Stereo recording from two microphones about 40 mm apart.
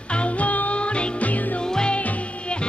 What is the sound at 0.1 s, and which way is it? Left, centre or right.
Music, left.